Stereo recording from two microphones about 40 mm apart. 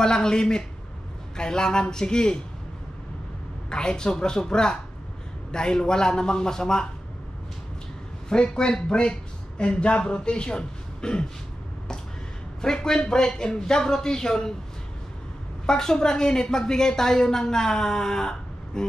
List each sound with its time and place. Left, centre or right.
0.0 s a woman's voice: centre
3.7 s a woman's voice: centre
8.3 s speech: centre
12.6 s a woman's voice: centre
15.6 s a woman's voice: centre